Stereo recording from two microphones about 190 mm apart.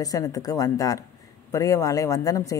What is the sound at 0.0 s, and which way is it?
A woman's voice, 20° left (ahead or behind).